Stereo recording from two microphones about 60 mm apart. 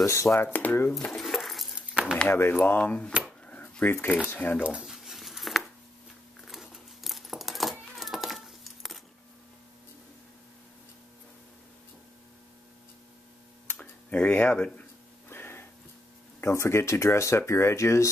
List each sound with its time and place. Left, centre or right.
0.0 s speech: left
0.3 s speech: left
1.1 s keys jangling: centre
1.8 s a sound: centre
2.2 s speech: left
3.4 s a sound: left
4.3 s speech: left
4.8 s a sound: centre
6.4 s coin: centre
7.9 s cat: centre
13.7 s tick-tock: left
15.2 s a sound: left
16.3 s speech: left